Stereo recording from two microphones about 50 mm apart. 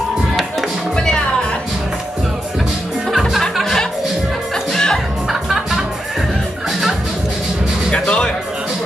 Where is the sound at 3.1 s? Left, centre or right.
Centre.